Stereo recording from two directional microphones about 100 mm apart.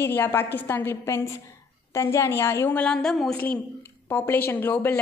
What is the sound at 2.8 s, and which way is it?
Speech, 5° left (ahead or behind).